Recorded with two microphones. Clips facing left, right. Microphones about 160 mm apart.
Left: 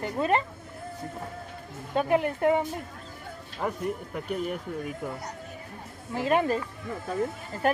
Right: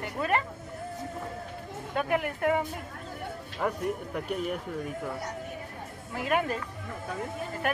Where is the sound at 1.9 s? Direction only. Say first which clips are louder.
Left 4 dB; 25° left (ahead or behind).